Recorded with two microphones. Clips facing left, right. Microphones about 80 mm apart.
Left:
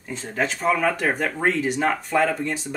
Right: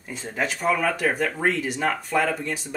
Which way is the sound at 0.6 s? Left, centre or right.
Centre.